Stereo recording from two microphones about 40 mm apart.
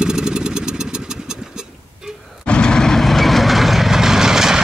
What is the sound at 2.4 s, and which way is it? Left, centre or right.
Vehicle, left.